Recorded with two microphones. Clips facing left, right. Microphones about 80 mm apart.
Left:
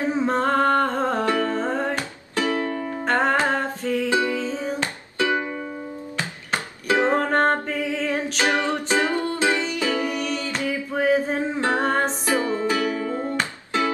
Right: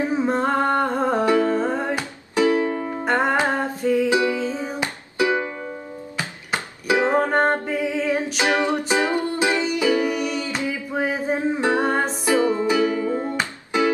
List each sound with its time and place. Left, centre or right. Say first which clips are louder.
0.1 s music: even; centre
4.5 s ukulele: even; centre
6.1 s music: right 1 dB; centre
8.5 s music: right 2 dB; right